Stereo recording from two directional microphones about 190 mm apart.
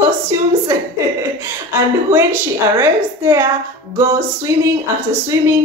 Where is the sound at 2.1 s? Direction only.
10° right (ahead or behind).